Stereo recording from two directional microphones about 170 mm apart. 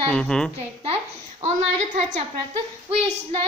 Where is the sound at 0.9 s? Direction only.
40° right (ahead or behind).